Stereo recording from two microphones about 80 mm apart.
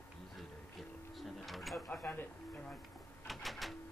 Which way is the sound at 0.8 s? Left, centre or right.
Centre.